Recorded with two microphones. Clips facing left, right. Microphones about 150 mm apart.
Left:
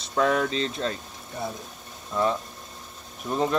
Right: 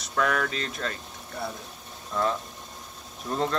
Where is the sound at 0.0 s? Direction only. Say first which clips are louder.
Left 3 dB; 25° left (ahead or behind).